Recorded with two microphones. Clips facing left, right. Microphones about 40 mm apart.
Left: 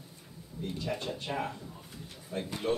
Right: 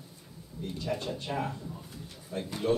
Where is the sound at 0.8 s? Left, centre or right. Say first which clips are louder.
Right 3 dB; left.